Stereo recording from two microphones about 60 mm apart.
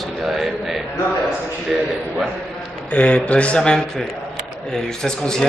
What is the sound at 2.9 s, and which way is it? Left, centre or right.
A man's voice, left.